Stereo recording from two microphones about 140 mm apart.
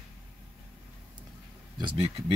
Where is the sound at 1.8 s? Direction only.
40° right (ahead or behind).